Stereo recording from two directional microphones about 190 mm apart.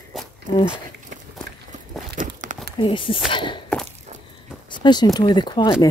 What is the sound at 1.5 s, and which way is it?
Walk, 60° right (ahead or behind).